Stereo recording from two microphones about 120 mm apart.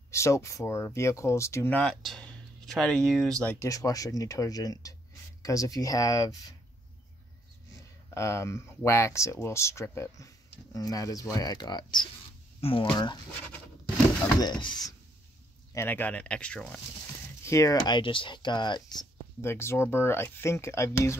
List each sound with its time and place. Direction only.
0.1 s speech: 25° left (ahead or behind)
1.8 s speech: 5° left (ahead or behind)
3.4 s speech: 25° left (ahead or behind)
8.1 s speech: 25° left (ahead or behind)
12.5 s a sound: 50° left (ahead or behind)
12.9 s speech: 40° left (ahead or behind)
14.4 s speech: 35° left (ahead or behind)
15.7 s speech: 15° left (ahead or behind)
17.5 s speech: 25° left (ahead or behind)
19.4 s speech: 20° left (ahead or behind)